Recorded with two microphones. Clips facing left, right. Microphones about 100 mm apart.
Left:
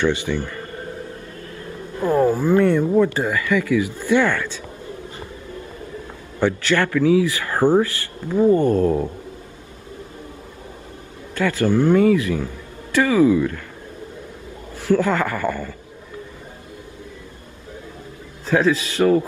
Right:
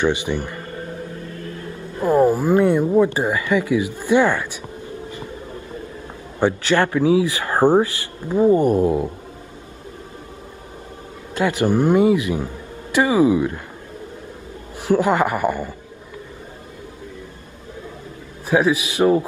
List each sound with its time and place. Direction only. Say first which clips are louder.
0.0 s speech: even; 15° right (ahead or behind)
2.0 s speech: right 2 dB; 15° right (ahead or behind)
6.4 s speech: right 1 dB; 20° right (ahead or behind)
11.3 s speech: even; 20° right (ahead or behind)
14.8 s speech: right 1 dB; 15° right (ahead or behind)
18.5 s speech: even; 15° right (ahead or behind)